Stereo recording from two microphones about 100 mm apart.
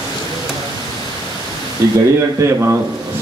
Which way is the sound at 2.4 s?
25° right (ahead or behind).